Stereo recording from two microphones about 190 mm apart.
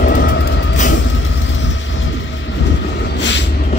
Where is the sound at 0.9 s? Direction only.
80° left.